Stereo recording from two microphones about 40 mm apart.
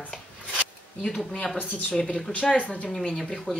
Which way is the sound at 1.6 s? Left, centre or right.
Left.